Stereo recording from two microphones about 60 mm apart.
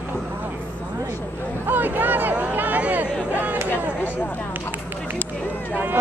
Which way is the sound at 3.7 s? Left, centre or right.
Left.